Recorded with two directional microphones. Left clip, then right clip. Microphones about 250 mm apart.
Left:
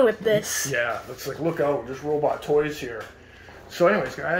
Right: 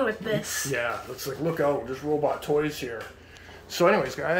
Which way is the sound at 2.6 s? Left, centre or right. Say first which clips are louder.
Left 3 dB; centre.